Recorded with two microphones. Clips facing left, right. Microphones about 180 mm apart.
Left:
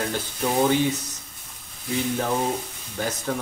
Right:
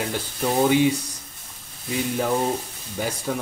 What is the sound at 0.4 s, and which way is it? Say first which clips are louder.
Speech: right 2 dB; 10° right (ahead or behind).